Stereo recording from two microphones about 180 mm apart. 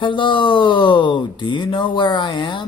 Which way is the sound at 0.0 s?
30° left (ahead or behind).